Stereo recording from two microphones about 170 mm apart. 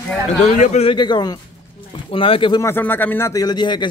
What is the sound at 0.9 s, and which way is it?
Speech, 25° left (ahead or behind).